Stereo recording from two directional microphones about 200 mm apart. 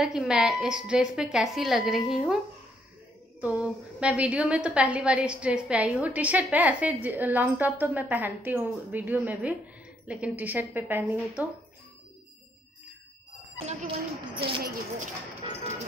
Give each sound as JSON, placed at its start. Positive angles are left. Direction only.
{"t": 0.0, "sound": "a woman's voice", "side_deg": 0}
{"t": 3.3, "sound": "a woman's voice", "side_deg": -5}
{"t": 13.7, "sound": "speech", "side_deg": -25}